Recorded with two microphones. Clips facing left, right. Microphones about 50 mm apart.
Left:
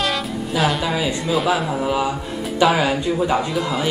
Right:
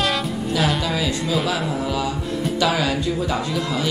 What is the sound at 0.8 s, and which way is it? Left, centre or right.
A man's voice, centre.